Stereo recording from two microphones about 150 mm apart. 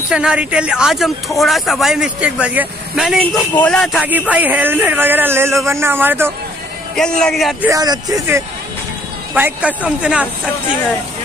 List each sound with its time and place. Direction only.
0.1 s speech: 5° right (ahead or behind)
3.5 s speech: 5° left (ahead or behind)
4.3 s speech: 10° right (ahead or behind)
7.0 s speech: 5° left (ahead or behind)
7.7 s speech: 25° right (ahead or behind)
9.3 s speech: 10° right (ahead or behind)